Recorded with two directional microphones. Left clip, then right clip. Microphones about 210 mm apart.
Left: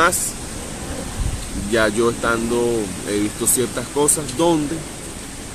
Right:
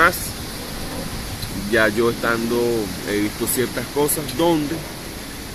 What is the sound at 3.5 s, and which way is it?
Speech, 15° left (ahead or behind).